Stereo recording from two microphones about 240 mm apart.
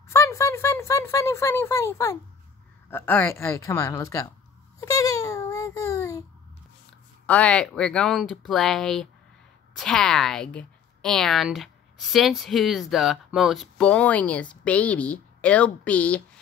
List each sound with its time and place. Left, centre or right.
0.1 s speech: centre
4.7 s a sound: centre
7.2 s a woman's voice: centre